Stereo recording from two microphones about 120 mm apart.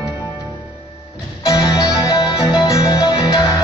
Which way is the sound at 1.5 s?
30° left (ahead or behind).